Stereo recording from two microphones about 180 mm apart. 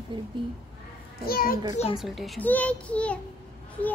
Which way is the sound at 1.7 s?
35° left (ahead or behind).